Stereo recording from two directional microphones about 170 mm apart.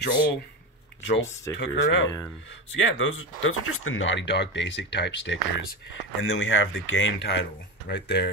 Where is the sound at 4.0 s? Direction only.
90° left.